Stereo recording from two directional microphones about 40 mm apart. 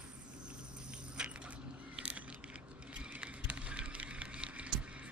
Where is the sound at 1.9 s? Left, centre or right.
Right.